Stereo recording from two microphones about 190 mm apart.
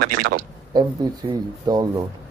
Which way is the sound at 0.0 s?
50° right (ahead or behind).